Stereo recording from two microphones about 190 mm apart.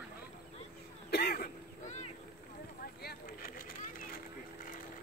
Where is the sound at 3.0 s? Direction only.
50° left (ahead or behind).